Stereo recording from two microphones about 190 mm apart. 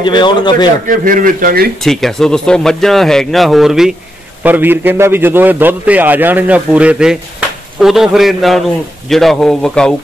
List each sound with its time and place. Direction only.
0.0 s a man's voice: 25° left (ahead or behind)
0.8 s speech: 45° right (ahead or behind)
1.8 s a man's voice: centre (ahead or behind)